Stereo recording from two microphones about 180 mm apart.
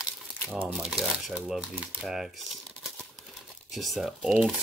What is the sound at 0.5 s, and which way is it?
Speech, 10° right (ahead or behind).